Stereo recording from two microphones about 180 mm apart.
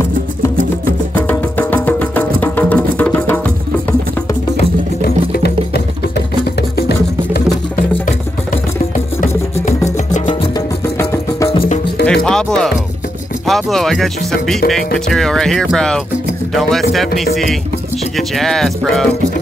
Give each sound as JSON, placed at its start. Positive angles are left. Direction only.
{"t": 1.1, "sound": "music", "side_deg": 10}
{"t": 5.0, "sound": "music", "side_deg": 65}
{"t": 7.3, "sound": "music", "side_deg": 50}
{"t": 11.0, "sound": "music", "side_deg": 15}
{"t": 12.1, "sound": "music", "side_deg": 5}
{"t": 13.5, "sound": "speech", "side_deg": 0}
{"t": 17.2, "sound": "speech", "side_deg": 0}